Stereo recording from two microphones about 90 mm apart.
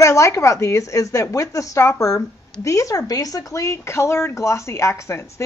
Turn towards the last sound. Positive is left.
turn(degrees=30)  # may be behind; listen again after turning